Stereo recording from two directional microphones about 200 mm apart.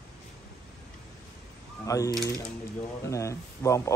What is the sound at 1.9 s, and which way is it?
Speech, 15° left (ahead or behind).